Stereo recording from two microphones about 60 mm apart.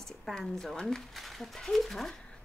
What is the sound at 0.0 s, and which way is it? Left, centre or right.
Speech, centre.